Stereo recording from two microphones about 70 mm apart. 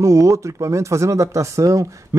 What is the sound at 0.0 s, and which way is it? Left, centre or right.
Speech, right.